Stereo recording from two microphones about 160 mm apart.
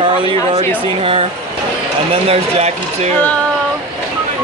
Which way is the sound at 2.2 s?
40° right (ahead or behind).